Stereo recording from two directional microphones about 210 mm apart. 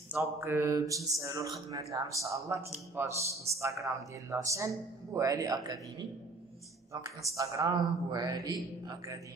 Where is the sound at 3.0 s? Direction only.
15° right (ahead or behind).